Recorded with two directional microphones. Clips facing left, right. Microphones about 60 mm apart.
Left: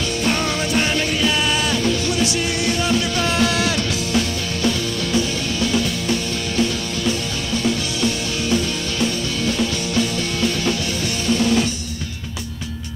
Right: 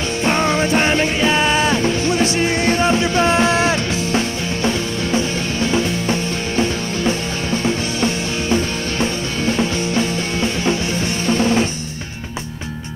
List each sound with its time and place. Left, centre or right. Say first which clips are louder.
0.2 s music: right 6 dB; right
11.2 s drum: right 1 dB; right